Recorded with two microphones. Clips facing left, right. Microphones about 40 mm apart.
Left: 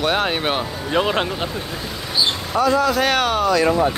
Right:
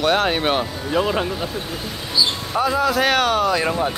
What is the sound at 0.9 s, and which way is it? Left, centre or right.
Speech, left.